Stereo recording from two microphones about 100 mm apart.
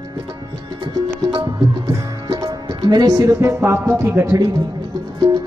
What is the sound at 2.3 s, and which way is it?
Music, 50° right (ahead or behind).